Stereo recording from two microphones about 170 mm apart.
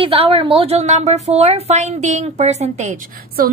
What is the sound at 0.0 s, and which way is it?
A woman's voice, 35° right (ahead or behind).